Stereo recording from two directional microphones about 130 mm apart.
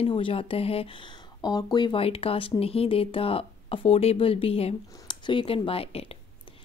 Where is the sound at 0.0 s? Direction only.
45° left (ahead or behind).